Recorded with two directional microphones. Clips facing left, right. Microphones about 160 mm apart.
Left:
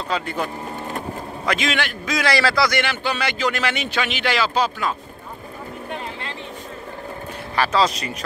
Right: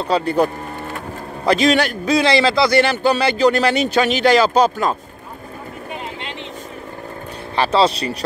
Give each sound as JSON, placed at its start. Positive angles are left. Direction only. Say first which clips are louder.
{"t": 0.1, "sound": "a man's voice", "louder": "right 9 dB", "side_deg": -35}
{"t": 7.5, "sound": "speech", "louder": "right 4 dB", "side_deg": -30}